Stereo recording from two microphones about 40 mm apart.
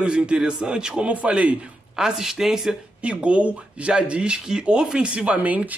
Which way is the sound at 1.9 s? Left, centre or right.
Centre.